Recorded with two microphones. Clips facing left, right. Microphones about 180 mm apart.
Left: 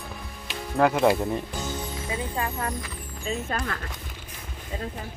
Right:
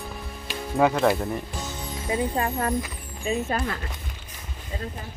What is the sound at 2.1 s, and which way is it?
Speech, 35° right (ahead or behind).